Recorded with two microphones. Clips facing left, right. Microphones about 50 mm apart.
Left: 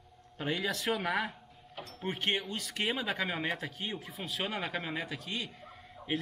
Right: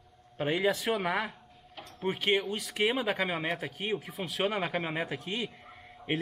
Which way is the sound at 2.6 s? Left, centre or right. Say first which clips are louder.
Right 5 dB; centre.